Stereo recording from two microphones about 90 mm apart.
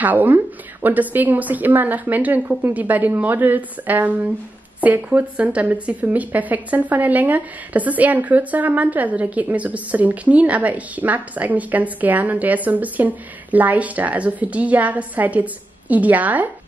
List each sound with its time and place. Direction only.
0.0 s a woman's voice: 20° right (ahead or behind)